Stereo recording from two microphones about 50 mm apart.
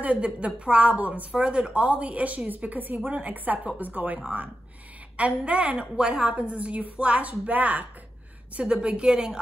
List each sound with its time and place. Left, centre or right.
0.0 s a woman's voice: right
8.5 s speech: centre